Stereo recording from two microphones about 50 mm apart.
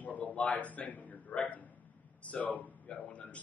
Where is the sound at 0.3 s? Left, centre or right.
Left.